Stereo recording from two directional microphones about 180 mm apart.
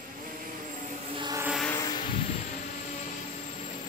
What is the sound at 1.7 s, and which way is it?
Vehicle, 20° left (ahead or behind).